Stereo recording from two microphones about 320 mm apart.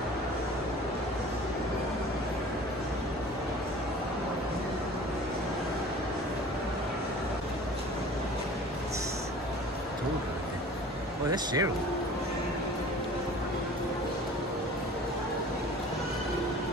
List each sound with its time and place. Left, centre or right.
11.3 s speech: centre